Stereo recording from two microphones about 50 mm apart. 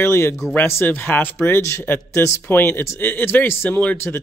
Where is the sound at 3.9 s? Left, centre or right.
Left.